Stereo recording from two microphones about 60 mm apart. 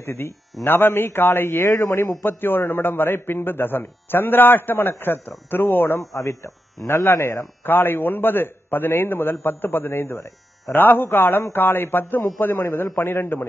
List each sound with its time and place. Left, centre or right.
0.0 s a man's voice: left
5.9 s a man's voice: left